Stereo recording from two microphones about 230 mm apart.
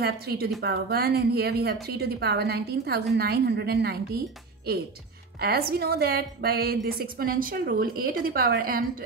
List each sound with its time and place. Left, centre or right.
0.0 s a woman's voice: right